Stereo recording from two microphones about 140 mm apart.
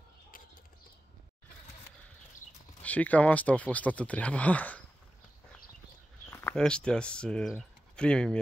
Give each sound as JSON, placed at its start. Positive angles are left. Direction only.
{"t": 2.8, "sound": "speech", "side_deg": 10}
{"t": 6.5, "sound": "speech", "side_deg": 5}